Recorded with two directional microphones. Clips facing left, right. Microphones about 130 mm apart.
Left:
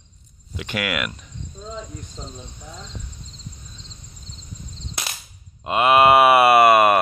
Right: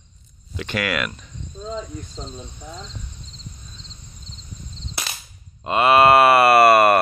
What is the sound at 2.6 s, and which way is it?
Speech, 5° right (ahead or behind).